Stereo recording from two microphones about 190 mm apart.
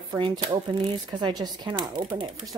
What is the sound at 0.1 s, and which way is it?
Speech, 25° right (ahead or behind).